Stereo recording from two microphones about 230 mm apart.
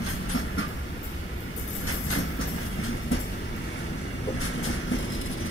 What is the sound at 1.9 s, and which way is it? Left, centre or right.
Train, left.